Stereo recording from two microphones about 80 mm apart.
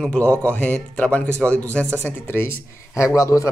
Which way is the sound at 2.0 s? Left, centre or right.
Left.